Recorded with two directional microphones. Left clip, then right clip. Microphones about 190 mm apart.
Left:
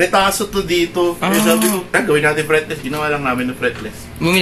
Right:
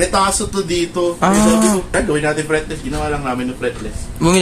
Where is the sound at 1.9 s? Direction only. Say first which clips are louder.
Left 3 dB; 5° right (ahead or behind).